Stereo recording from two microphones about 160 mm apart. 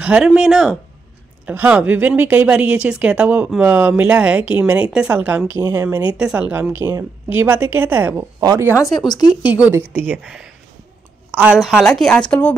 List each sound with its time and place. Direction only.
0.0 s a woman's voice: 5° right (ahead or behind)
8.4 s speech: 25° right (ahead or behind)
8.7 s speech: 25° left (ahead or behind)
9.7 s a woman's voice: 10° right (ahead or behind); by 12.5 s 10° left (ahead or behind)